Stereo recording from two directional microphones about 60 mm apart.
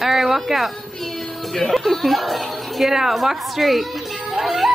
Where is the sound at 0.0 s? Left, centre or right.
Centre.